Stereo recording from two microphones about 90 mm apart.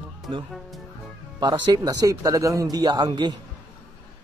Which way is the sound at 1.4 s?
55° right (ahead or behind).